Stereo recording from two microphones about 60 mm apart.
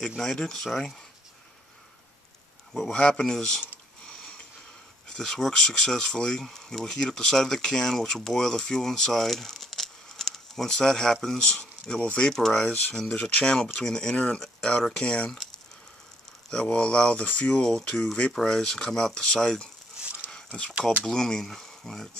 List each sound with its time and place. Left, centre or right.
0.2 s speech: centre
2.9 s speech: centre
4.0 s a sound: centre
5.1 s speech: centre
12.0 s speech: left
12.3 s speech: centre
16.4 s speech: centre
20.0 s a sound: centre
21.0 s speech: centre